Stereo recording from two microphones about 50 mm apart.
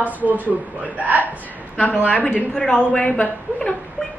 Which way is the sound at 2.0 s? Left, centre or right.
Left.